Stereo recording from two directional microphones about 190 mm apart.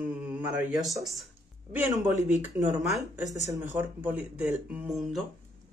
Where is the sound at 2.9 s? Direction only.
15° right (ahead or behind).